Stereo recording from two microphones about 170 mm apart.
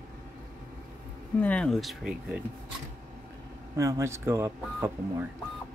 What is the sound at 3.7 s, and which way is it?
Speech, 20° right (ahead or behind).